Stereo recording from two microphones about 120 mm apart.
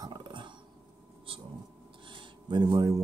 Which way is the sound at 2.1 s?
35° right (ahead or behind).